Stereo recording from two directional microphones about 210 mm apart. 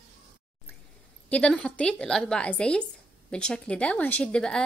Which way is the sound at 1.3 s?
5° left (ahead or behind).